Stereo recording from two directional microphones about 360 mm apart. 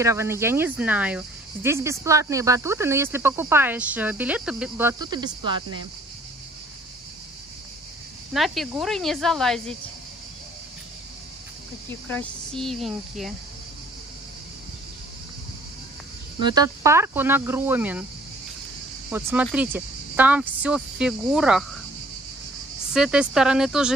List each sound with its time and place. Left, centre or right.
0.0 s speech: centre
8.3 s speech: centre
12.1 s speech: centre
16.4 s speech: centre
19.0 s speech: centre
22.9 s speech: centre